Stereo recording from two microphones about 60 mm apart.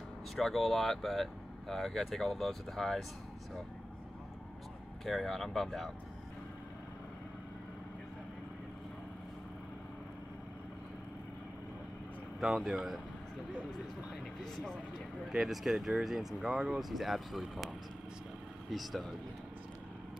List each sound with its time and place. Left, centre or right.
0.4 s speech: centre
5.0 s speech: centre
12.4 s speech: centre
14.4 s speech: centre
18.7 s speech: centre